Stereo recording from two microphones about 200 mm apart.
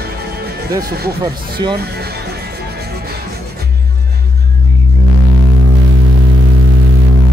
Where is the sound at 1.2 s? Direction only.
20° right (ahead or behind).